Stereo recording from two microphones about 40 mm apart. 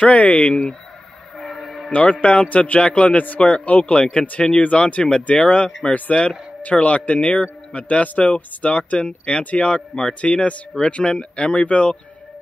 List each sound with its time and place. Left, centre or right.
0.0 s a man's voice: left
0.5 s speech: centre
1.4 s train: centre
1.9 s a man's voice: left
3.6 s a man's voice: left